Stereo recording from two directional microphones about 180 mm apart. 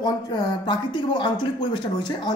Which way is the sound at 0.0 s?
20° left (ahead or behind).